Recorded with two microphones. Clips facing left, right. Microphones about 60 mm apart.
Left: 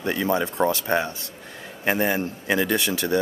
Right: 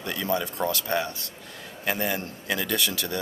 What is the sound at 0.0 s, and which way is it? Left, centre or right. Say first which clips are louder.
A man's voice: left 5 dB; left.